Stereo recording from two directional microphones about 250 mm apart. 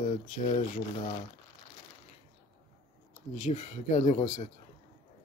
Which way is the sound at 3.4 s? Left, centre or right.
Left.